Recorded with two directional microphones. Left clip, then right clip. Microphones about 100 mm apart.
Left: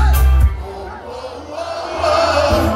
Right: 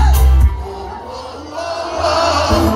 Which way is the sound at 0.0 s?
35° left (ahead or behind).